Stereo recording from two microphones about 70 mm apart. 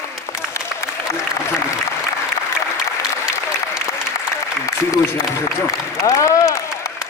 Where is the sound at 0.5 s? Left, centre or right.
Left.